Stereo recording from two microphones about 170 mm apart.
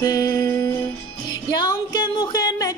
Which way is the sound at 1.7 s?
25° left (ahead or behind).